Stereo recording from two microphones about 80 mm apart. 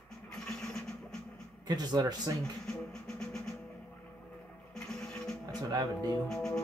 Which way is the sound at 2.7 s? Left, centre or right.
Centre.